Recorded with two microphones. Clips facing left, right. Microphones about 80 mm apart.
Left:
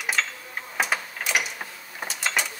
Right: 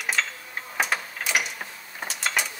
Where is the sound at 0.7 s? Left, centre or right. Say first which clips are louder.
Even; centre.